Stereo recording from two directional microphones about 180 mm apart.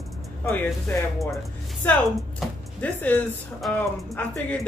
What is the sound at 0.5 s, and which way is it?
Speech, 10° left (ahead or behind).